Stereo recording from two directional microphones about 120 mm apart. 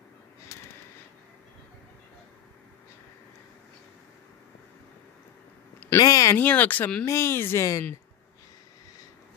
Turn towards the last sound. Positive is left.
turn(degrees=25)  # may be behind; listen again after turning